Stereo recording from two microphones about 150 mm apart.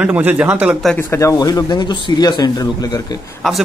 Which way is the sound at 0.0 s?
10° right (ahead or behind).